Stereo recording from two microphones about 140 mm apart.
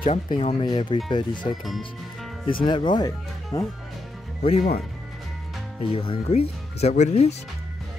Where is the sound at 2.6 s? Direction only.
35° left (ahead or behind).